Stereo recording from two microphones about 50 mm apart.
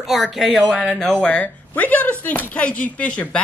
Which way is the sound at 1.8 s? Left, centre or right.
Left.